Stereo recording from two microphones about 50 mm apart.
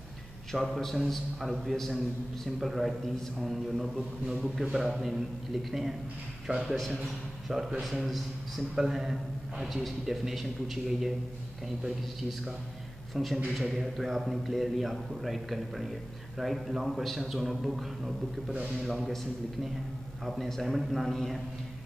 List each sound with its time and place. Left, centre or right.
0.5 s a man's voice: centre
6.4 s a man's voice: centre
7.4 s a man's voice: centre
18.5 s a man's voice: right
18.9 s a man's voice: centre
20.2 s a man's voice: centre
20.6 s a man's voice: centre